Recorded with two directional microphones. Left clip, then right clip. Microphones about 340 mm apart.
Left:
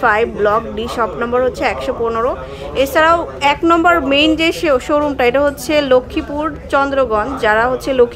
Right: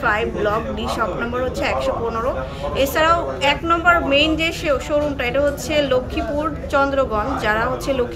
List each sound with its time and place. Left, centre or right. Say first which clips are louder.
0.0 s a woman's voice: left 6 dB; centre